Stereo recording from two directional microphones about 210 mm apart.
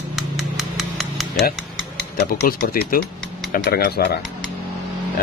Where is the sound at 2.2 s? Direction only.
45° left (ahead or behind).